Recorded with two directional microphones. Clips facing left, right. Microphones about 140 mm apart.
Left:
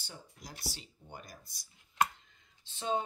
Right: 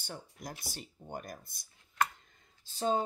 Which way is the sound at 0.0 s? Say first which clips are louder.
Right 6 dB; 55° right (ahead or behind).